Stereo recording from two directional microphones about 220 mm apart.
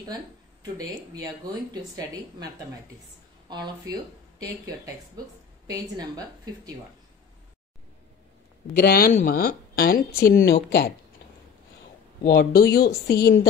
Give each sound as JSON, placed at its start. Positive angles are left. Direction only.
{"t": 0.7, "sound": "speech", "side_deg": -15}
{"t": 8.7, "sound": "speech", "side_deg": 45}
{"t": 12.2, "sound": "speech", "side_deg": 45}